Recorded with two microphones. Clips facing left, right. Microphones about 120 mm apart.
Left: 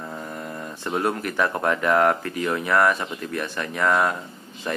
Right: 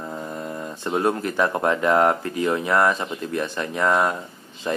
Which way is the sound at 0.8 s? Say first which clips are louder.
Right 3 dB; 20° right (ahead or behind).